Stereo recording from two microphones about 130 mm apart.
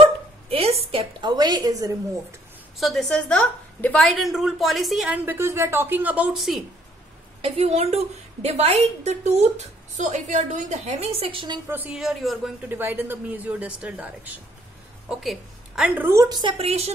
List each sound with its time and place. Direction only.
0.5 s a sound: 50° right (ahead or behind)
1.2 s a woman's voice: 30° right (ahead or behind)
2.8 s a woman's voice: centre (ahead or behind)
5.2 s speech: 20° right (ahead or behind); by 6.6 s centre (ahead or behind)
7.4 s a woman's voice: 50° right (ahead or behind)
9.9 s a woman's voice: 70° right (ahead or behind); by 11.6 s 40° right (ahead or behind)
11.7 s speech: 15° right (ahead or behind)
12.0 s a woman's voice: centre (ahead or behind)
12.6 s a woman's voice: 15° right (ahead or behind)
15.9 s speech: 15° right (ahead or behind)
16.3 s a woman's voice: 35° right (ahead or behind)
16.5 s a woman's voice: 50° right (ahead or behind)